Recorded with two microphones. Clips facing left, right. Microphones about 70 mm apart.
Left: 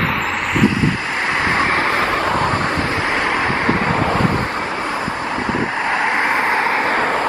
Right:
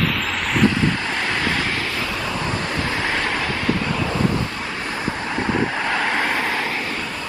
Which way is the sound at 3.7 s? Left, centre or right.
Left.